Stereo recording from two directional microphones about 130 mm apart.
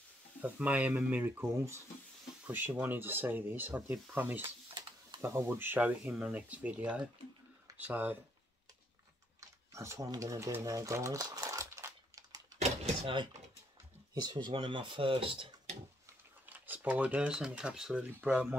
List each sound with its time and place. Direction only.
0.4 s speech: 10° right (ahead or behind)
9.4 s sewing machine: 25° right (ahead or behind)
12.5 s a sound: 55° right (ahead or behind)
14.2 s speech: 35° right (ahead or behind)
16.4 s speech: 15° right (ahead or behind)